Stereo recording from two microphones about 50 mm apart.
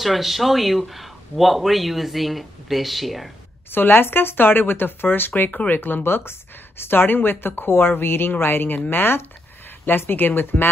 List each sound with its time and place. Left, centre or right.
0.0 s speech: centre
3.7 s speech: left